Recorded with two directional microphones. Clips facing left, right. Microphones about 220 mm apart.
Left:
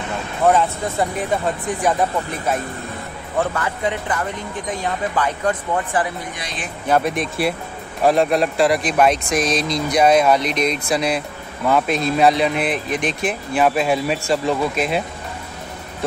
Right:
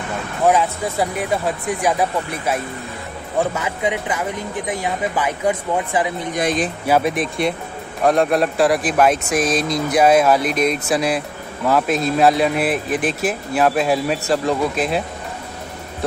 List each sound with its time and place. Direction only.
0.5 s speech: centre (ahead or behind)
6.3 s speech: 45° right (ahead or behind)
6.9 s speech: centre (ahead or behind)